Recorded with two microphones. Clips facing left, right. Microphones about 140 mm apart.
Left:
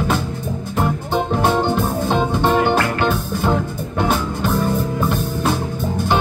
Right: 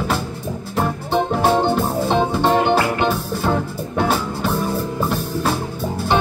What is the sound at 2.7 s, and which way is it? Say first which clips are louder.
Music: even; 10° right (ahead or behind).